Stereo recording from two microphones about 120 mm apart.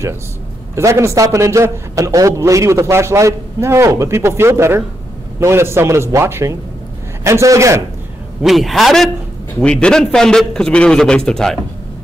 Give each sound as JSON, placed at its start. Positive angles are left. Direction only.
{"t": 0.7, "sound": "a man's voice", "side_deg": -25}
{"t": 8.4, "sound": "a man's voice", "side_deg": 0}